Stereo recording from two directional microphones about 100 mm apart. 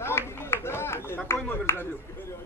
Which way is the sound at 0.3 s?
25° left (ahead or behind).